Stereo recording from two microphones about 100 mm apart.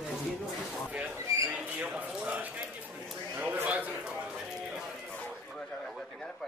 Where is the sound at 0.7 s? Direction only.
15° right (ahead or behind).